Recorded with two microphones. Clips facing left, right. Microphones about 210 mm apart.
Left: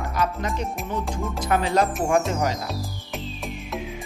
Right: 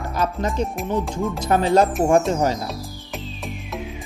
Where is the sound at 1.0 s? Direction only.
Centre (ahead or behind).